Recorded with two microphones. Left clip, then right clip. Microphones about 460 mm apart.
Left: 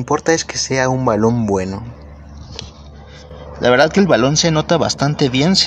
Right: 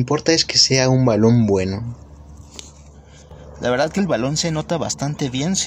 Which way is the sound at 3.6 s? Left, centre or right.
Left.